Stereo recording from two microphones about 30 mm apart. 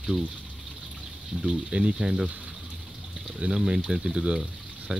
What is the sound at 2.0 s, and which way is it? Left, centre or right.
Speech, centre.